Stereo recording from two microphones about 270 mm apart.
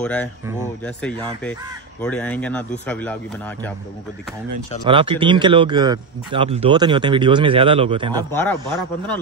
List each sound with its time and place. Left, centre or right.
0.0 s speech: centre
4.8 s a man's voice: centre
8.4 s speech: centre